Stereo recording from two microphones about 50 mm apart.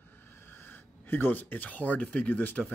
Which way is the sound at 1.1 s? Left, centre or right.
Left.